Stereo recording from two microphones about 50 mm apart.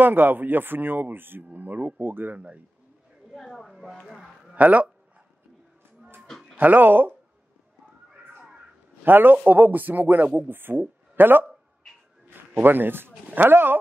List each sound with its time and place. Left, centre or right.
0.0 s a man's voice: right
3.3 s a woman's voice: centre
4.6 s speech: right
6.5 s a man's voice: right
9.0 s a man's voice: right
12.5 s speech: right